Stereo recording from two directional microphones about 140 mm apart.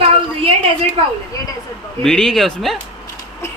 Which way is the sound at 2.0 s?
5° left (ahead or behind).